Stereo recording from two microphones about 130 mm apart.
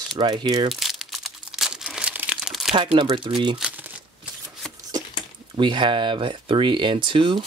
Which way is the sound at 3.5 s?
10° right (ahead or behind).